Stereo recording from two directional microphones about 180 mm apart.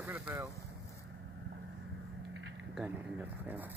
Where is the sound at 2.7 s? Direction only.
10° right (ahead or behind).